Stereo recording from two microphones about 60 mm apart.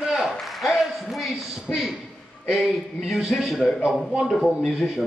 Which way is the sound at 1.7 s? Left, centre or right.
Left.